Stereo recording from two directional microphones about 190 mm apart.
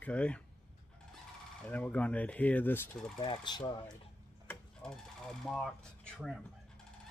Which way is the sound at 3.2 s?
25° left (ahead or behind).